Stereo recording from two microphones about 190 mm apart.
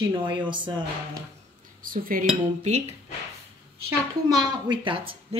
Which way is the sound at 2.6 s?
35° right (ahead or behind).